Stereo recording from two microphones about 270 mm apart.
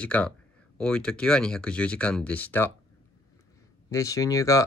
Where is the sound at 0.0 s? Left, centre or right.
Centre.